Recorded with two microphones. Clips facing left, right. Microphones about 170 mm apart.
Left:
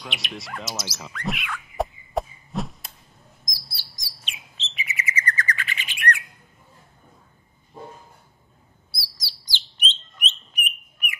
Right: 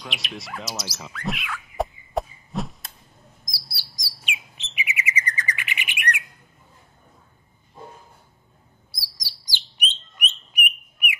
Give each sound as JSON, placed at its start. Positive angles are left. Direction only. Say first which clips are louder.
{"t": 0.0, "sound": "rodents", "louder": "even", "side_deg": 0}
{"t": 3.4, "sound": "chirp", "louder": "even", "side_deg": -10}
{"t": 9.0, "sound": "bird", "louder": "even", "side_deg": -15}